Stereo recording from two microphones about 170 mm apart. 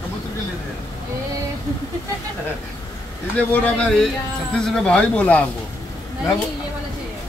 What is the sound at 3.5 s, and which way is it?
Speech, 5° left (ahead or behind).